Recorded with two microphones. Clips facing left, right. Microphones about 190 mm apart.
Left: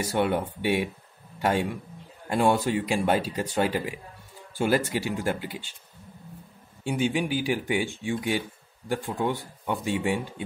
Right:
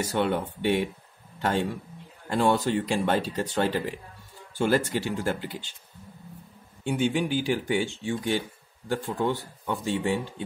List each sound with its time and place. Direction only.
0.0 s speech: 10° left (ahead or behind)
6.8 s speech: 10° left (ahead or behind)